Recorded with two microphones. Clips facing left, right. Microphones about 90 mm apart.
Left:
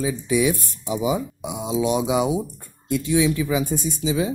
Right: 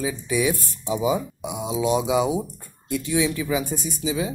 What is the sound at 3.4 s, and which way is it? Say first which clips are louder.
Speech: left 2 dB; 25° left (ahead or behind).